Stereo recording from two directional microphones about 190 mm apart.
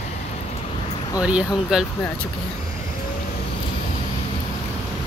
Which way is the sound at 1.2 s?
5° right (ahead or behind).